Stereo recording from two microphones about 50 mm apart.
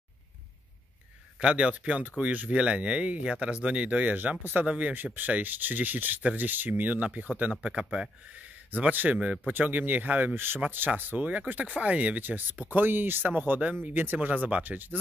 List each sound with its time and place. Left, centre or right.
1.4 s speech: right
4.6 s speech: right
7.6 s speech: centre
8.7 s speech: right
10.3 s speech: right